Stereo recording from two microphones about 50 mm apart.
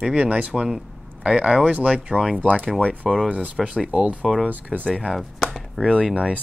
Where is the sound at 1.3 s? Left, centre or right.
Right.